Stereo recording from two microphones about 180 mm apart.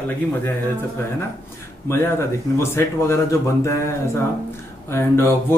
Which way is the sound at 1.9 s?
15° left (ahead or behind).